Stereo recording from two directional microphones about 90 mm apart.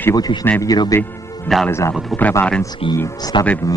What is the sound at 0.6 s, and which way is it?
Speech, 45° left (ahead or behind).